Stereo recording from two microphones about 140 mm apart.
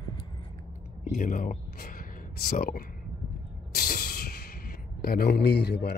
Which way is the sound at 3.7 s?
90° left.